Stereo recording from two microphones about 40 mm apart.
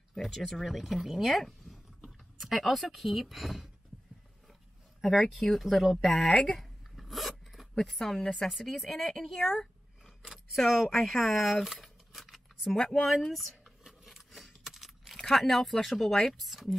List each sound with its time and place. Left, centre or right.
0.1 s speech: centre
5.0 s speech: centre
6.5 s a sound: centre
7.8 s speech: centre
12.7 s speech: centre
13.1 s speech: centre
14.0 s a sound: centre
15.3 s speech: centre